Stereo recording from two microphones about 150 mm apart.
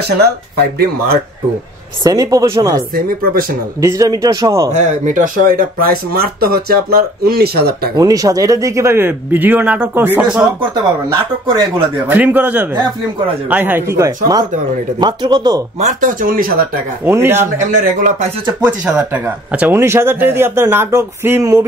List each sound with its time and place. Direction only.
0.2 s speech: 90° right
2.0 s a man's voice: 20° right (ahead or behind)
2.9 s speech: 75° right (ahead or behind)
3.8 s a man's voice: 20° right (ahead or behind)
4.7 s speech: 55° right (ahead or behind); by 7.9 s 90° right
7.9 s speech: 25° right (ahead or behind)
12.1 s a man's voice: 10° right (ahead or behind); by 15.6 s 25° right (ahead or behind)
15.8 s speech: 55° right (ahead or behind); by 16.6 s 70° right (ahead or behind)
17.0 s speech: 15° right (ahead or behind)
17.6 s speech: 60° right (ahead or behind)
18.9 s speech: 10° right (ahead or behind)